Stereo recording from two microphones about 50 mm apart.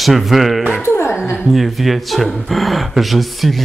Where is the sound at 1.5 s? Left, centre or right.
Centre.